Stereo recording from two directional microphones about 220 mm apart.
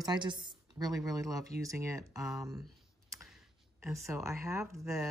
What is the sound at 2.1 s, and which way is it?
Speech, centre (ahead or behind).